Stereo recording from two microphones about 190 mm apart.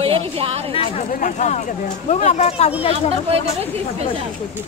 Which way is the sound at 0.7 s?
35° left (ahead or behind).